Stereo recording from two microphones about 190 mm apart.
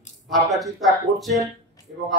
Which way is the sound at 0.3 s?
Centre (ahead or behind).